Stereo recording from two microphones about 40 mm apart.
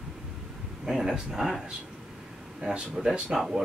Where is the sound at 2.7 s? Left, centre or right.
Centre.